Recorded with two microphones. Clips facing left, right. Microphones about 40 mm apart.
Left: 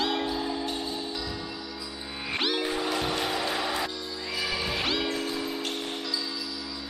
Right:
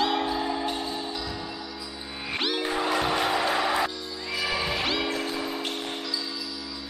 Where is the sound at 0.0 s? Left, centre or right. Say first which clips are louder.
Right 3 dB; centre.